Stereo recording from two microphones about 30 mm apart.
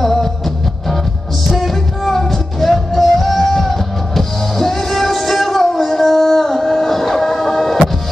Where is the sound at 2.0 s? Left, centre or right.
Centre.